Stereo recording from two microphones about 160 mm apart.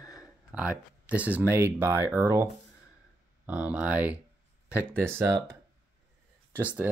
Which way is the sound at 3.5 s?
10° right (ahead or behind).